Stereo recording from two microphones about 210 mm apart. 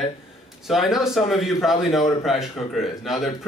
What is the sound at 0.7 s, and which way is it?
A man's voice, centre (ahead or behind).